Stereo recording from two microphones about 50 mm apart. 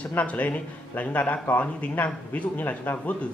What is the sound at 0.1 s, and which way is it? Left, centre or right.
A man's voice, left.